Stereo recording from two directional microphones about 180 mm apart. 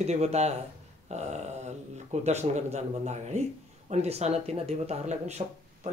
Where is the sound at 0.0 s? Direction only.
35° right (ahead or behind).